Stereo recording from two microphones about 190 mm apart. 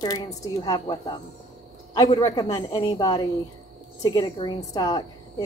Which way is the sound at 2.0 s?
20° left (ahead or behind).